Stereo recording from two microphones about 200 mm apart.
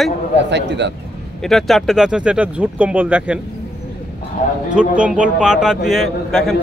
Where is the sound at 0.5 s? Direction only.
60° right (ahead or behind).